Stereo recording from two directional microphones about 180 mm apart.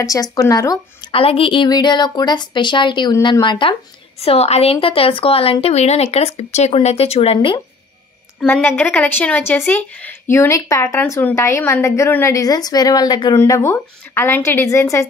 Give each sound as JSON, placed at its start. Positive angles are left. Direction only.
{"t": 0.0, "sound": "a woman's voice", "side_deg": 20}
{"t": 1.1, "sound": "a woman's voice", "side_deg": 30}
{"t": 8.4, "sound": "speech", "side_deg": 10}